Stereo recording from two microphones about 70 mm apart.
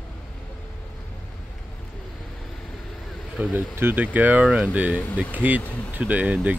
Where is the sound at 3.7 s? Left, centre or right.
Right.